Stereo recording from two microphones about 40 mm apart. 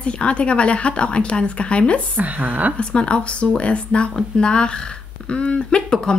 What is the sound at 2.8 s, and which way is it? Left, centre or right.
Speech, left.